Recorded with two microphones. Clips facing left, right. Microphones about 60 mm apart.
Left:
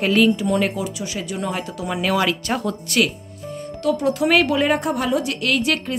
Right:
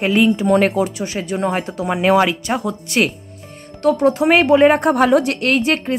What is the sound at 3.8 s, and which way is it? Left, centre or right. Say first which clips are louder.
A woman's voice: right 5 dB; right.